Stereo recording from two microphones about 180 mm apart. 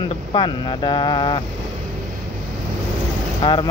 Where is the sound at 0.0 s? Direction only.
25° left (ahead or behind).